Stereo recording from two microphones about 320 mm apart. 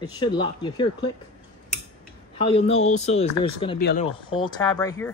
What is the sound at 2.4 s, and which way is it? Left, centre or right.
Speech, centre.